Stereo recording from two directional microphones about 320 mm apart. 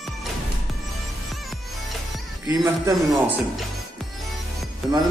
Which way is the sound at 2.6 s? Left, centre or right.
Centre.